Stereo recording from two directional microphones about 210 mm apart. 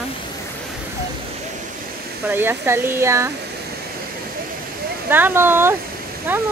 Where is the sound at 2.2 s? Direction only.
10° right (ahead or behind).